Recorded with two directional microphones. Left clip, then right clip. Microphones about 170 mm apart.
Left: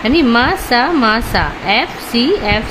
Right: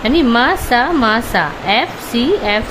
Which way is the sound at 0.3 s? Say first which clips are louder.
Even; 10° left (ahead or behind).